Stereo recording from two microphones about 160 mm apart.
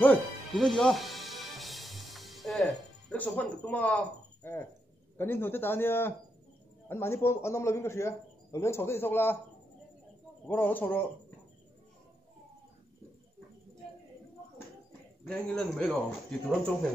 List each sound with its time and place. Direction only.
0.0 s music: 5° left (ahead or behind)
5.1 s a man's voice: 15° left (ahead or behind)
10.4 s a man's voice: 10° left (ahead or behind)
15.2 s speech: 5° left (ahead or behind)